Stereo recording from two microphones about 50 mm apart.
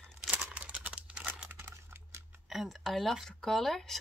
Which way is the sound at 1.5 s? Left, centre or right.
Right.